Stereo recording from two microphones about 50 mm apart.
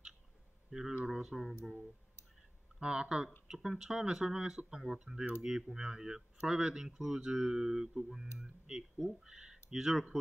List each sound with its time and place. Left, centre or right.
0.7 s speech: centre
2.8 s speech: centre